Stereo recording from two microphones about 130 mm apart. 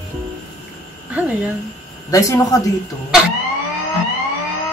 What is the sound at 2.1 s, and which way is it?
Speech, 25° left (ahead or behind).